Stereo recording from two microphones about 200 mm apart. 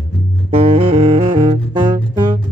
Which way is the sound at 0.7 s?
25° right (ahead or behind).